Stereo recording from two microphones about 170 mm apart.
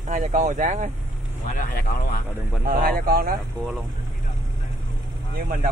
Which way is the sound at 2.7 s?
60° right (ahead or behind).